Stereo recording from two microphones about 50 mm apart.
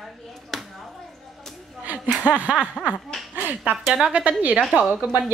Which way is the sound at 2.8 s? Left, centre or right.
Left.